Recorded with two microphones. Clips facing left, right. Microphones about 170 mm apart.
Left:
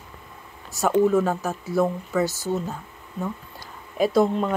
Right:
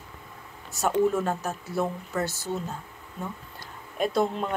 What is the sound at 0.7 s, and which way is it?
Speech, centre (ahead or behind).